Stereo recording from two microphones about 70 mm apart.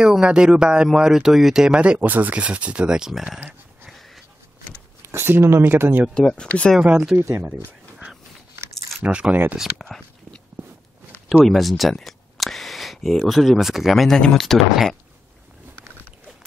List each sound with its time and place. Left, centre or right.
0.0 s speech: centre
5.0 s speech: right
6.1 s speech: centre
6.8 s speech: centre
9.0 s speech: centre
9.6 s speech: centre
11.4 s speech: centre